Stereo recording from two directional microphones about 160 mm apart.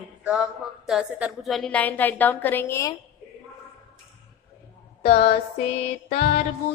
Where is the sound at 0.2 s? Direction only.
5° right (ahead or behind); by 3.0 s 20° left (ahead or behind).